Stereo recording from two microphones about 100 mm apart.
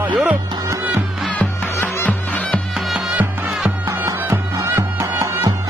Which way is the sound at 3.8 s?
30° right (ahead or behind).